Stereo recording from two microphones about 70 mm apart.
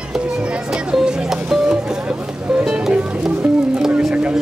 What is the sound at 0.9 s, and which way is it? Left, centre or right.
Music, centre.